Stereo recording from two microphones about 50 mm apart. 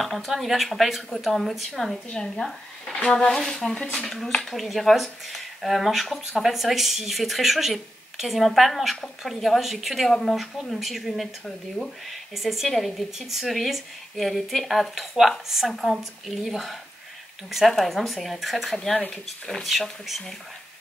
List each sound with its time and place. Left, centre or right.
0.0 s speech: centre
2.9 s speech: centre
18.8 s speech: centre
19.2 s speech: centre